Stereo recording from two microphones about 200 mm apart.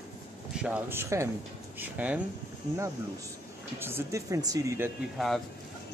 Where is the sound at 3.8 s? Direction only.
15° right (ahead or behind).